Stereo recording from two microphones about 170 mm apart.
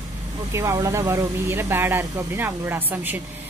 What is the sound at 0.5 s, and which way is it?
A woman's voice, 15° right (ahead or behind).